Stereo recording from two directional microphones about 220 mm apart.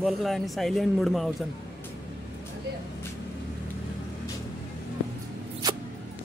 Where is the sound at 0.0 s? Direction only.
Centre (ahead or behind).